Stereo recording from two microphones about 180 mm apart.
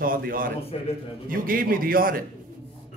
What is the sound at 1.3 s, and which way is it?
Speech, 50° right (ahead or behind).